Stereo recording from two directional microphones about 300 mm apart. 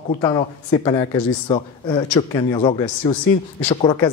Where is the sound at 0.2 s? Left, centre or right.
Centre.